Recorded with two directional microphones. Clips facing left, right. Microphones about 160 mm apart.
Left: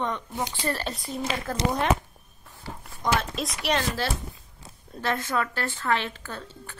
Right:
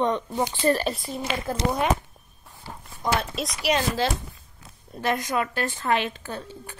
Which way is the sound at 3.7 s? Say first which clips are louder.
Right 3 dB; 15° right (ahead or behind).